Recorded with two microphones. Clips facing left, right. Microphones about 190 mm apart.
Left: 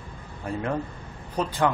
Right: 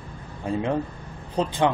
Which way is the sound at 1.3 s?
25° right (ahead or behind).